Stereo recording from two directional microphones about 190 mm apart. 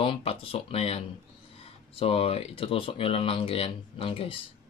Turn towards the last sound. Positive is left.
turn(degrees=30)  # may be behind; listen again after turning